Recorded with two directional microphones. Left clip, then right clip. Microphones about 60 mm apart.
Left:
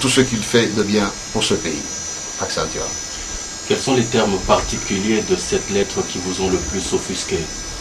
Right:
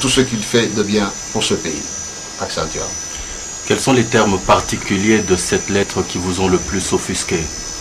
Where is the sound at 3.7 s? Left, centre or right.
Right.